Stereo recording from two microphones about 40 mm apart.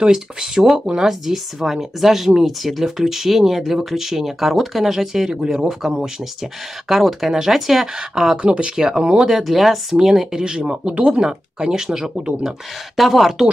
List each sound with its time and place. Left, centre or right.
0.0 s speech: centre
8.4 s speech: right
9.4 s speech: centre
10.6 s speech: right
11.2 s speech: centre
12.4 s speech: centre